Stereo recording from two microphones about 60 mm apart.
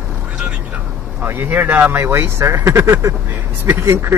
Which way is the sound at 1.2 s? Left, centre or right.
Right.